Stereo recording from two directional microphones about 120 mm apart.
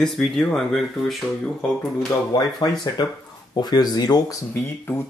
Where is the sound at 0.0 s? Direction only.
5° left (ahead or behind).